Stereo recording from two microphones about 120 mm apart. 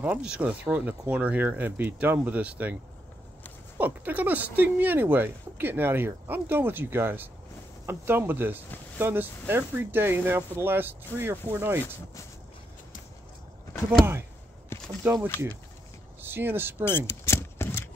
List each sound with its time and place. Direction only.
0.0 s speech: 10° right (ahead or behind)
3.7 s speech: 15° right (ahead or behind)
15.0 s speech: 15° right (ahead or behind)
16.8 s a sound: 20° left (ahead or behind)